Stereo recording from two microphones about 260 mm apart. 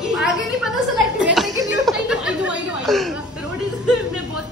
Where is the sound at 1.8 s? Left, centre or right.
Centre.